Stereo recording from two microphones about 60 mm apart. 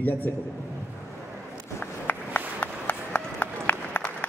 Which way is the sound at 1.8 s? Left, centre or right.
Left.